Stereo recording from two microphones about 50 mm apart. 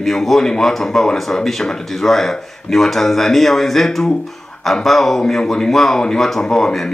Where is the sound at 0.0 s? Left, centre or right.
Centre.